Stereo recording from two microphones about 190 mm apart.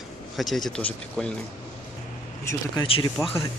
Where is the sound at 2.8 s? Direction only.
30° left (ahead or behind).